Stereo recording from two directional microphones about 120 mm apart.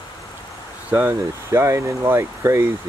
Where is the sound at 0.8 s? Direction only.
15° right (ahead or behind).